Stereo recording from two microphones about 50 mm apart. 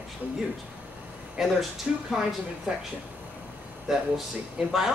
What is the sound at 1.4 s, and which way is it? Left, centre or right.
Speech, centre.